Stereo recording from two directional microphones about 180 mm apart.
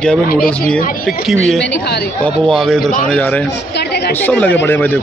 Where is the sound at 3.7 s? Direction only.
65° left (ahead or behind).